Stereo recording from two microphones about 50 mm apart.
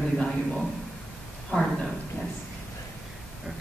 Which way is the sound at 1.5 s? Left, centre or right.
Centre.